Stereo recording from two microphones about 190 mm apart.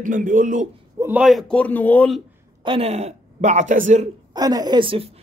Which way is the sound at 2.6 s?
30° right (ahead or behind).